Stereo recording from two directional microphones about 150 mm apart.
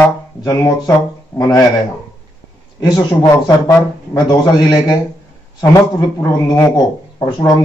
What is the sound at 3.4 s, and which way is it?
Speech, 25° left (ahead or behind).